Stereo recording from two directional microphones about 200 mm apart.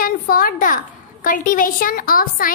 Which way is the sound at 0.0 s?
45° left (ahead or behind).